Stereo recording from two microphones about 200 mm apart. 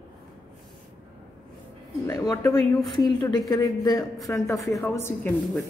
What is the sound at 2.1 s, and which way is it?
A woman's voice, 15° left (ahead or behind).